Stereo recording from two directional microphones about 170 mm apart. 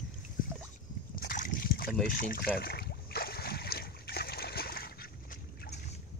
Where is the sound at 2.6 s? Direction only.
65° left (ahead or behind).